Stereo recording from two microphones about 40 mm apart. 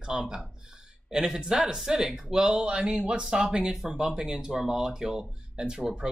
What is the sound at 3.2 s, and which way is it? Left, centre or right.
Speech, centre.